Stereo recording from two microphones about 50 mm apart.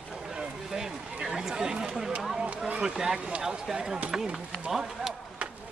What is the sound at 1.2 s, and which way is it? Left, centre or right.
Chatter, centre.